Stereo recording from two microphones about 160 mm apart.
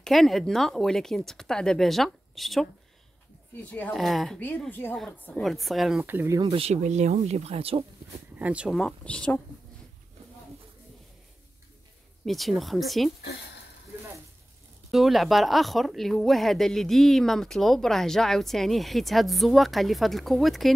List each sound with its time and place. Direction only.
0.0 s speech: centre (ahead or behind)
3.7 s speech: 5° left (ahead or behind)
6.0 s speech: 15° right (ahead or behind)
6.4 s speech: 40° right (ahead or behind)
8.4 s speech: 10° right (ahead or behind); by 9.4 s 5° left (ahead or behind)
12.3 s speech: centre (ahead or behind)
14.9 s speech: centre (ahead or behind)